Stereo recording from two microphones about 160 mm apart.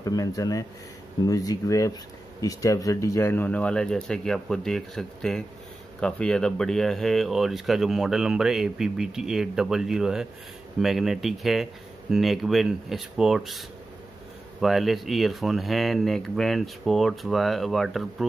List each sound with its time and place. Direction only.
0.0 s speech: 20° left (ahead or behind); by 18.0 s centre (ahead or behind)